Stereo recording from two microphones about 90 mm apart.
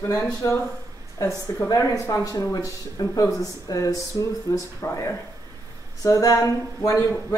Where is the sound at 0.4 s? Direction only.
40° left (ahead or behind).